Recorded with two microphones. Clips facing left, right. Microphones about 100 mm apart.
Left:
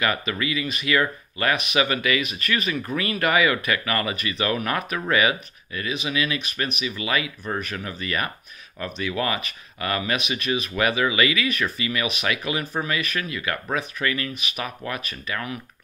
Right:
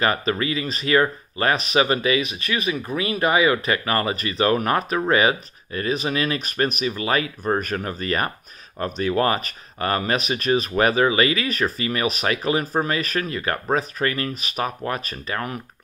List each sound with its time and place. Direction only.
0.0 s speech: 35° right (ahead or behind)